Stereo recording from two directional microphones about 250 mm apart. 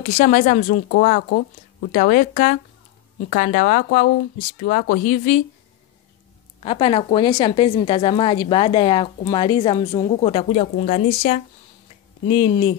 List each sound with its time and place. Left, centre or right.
0.0 s speech: left
6.6 s a woman's voice: left